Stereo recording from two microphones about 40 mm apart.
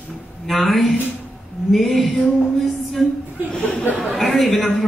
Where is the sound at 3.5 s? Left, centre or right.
Centre.